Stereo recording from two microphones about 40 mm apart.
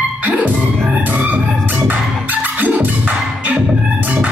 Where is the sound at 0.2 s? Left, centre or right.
Right.